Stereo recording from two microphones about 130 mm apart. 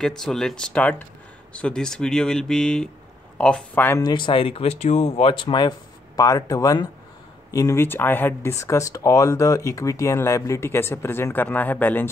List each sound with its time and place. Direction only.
0.0 s speech: 5° left (ahead or behind)
4.0 s speech: 35° left (ahead or behind); by 5.3 s 60° left (ahead or behind)
5.3 s speech: 40° left (ahead or behind); by 12.1 s 15° left (ahead or behind)